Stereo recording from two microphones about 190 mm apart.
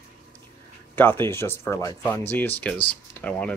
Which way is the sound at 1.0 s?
10° left (ahead or behind).